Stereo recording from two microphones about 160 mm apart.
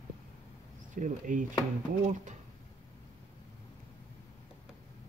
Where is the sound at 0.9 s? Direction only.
55° right (ahead or behind).